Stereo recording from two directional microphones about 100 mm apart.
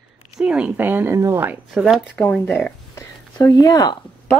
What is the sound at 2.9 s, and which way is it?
Speech, 30° left (ahead or behind).